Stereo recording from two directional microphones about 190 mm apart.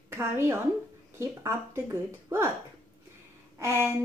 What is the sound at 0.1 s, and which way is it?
A woman's voice, 15° right (ahead or behind).